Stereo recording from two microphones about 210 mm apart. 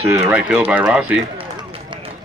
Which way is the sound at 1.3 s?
25° right (ahead or behind).